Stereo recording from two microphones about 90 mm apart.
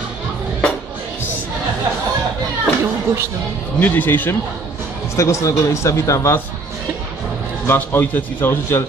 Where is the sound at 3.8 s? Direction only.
20° left (ahead or behind).